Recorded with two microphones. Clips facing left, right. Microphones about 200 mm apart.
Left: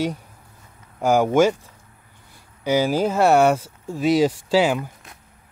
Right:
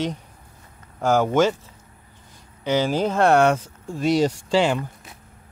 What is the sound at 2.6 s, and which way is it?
Speech, 10° left (ahead or behind).